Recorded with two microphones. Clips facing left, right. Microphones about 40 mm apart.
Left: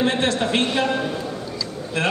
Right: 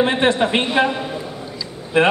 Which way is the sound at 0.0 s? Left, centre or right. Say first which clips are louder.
Right 4 dB; right.